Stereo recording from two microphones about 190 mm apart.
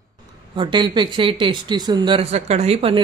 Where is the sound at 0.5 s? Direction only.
25° right (ahead or behind).